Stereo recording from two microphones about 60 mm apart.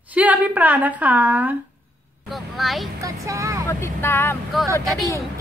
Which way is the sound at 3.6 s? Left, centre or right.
Left.